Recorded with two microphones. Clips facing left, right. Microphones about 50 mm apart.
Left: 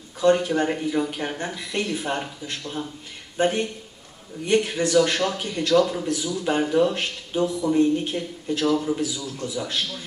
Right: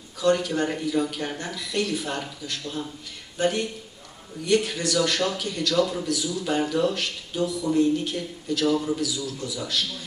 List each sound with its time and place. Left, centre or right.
0.2 s a man's voice: left
8.7 s a man's voice: centre
9.0 s a man's voice: left